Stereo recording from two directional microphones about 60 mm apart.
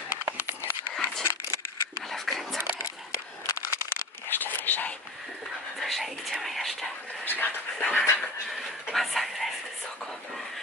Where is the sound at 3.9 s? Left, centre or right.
Left.